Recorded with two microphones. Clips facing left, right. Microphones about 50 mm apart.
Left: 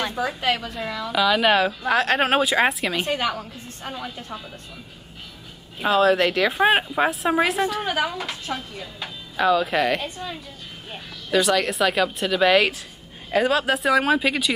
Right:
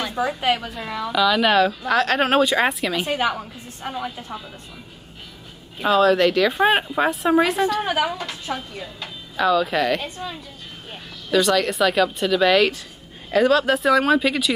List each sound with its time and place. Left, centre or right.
0.1 s a woman's voice: centre
1.1 s speech: centre
3.2 s a woman's voice: centre
5.8 s a woman's voice: centre
8.5 s speech: right
9.0 s a woman's voice: centre